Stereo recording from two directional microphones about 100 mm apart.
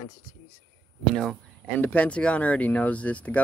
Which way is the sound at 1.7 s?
15° left (ahead or behind).